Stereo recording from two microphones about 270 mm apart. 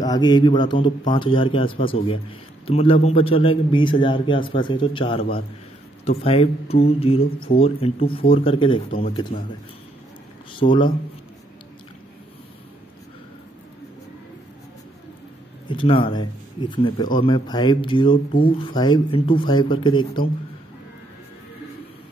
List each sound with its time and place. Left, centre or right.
0.0 s a man's voice: centre
7.2 s speech: left
7.4 s a man's voice: left
10.5 s speech: centre
15.7 s speech: centre